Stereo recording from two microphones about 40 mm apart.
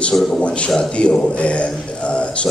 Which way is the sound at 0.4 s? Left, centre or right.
Left.